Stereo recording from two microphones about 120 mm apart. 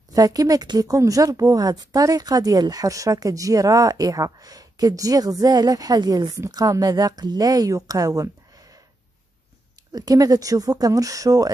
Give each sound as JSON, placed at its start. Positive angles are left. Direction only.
{"t": 0.1, "sound": "a woman's voice", "side_deg": -30}
{"t": 9.9, "sound": "a woman's voice", "side_deg": -30}